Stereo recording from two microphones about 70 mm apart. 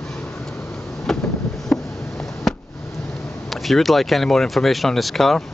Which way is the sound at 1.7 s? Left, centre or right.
Centre.